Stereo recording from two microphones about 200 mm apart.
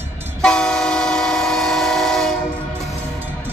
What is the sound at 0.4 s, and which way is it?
Train, 5° left (ahead or behind).